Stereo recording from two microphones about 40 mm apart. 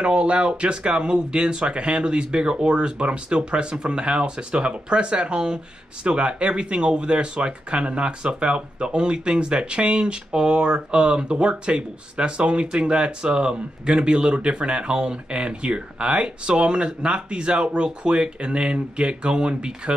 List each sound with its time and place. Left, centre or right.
0.0 s speech: right